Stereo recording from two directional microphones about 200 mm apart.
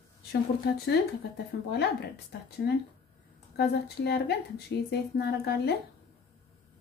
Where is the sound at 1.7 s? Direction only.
55° left (ahead or behind).